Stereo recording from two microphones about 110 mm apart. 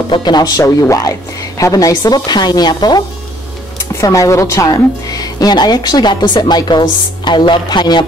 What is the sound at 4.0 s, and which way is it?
A woman's voice, 30° left (ahead or behind).